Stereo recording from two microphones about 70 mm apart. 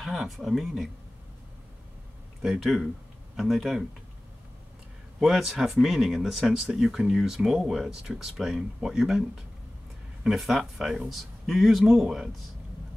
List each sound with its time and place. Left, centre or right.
0.0 s speech: centre
2.4 s speech: centre
5.2 s speech: centre